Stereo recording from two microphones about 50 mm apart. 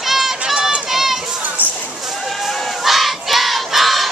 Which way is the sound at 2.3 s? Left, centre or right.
Centre.